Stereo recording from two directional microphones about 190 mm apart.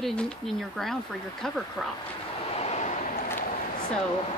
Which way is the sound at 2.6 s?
35° left (ahead or behind).